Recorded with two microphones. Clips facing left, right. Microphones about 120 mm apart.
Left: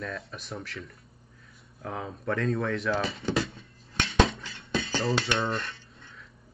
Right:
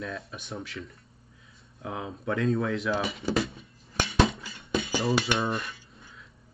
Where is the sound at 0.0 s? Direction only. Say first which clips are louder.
Even; centre (ahead or behind).